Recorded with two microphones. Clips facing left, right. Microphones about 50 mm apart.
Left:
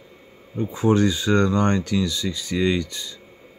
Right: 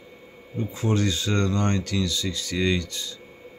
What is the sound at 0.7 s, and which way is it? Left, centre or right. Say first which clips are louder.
Speech: left 6 dB; left.